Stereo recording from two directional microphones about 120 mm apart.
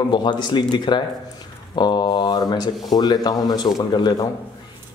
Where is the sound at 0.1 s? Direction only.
40° left (ahead or behind).